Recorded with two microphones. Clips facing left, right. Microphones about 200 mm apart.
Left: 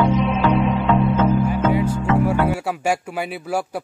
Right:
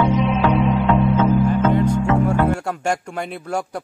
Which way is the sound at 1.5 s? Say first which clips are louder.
Right 2 dB; 10° left (ahead or behind).